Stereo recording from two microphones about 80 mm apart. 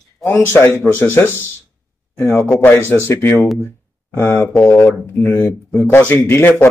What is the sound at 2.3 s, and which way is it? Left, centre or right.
Speech, centre.